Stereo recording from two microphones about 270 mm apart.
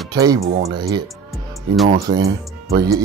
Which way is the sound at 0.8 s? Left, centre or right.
Centre.